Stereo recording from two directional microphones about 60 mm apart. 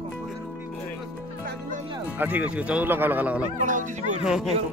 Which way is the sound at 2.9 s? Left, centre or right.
Right.